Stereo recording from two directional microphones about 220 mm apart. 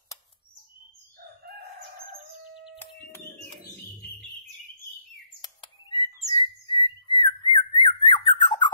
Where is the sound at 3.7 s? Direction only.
45° left (ahead or behind).